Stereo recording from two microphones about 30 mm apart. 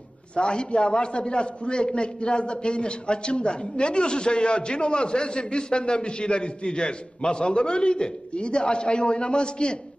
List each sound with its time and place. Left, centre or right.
0.4 s a man's voice: left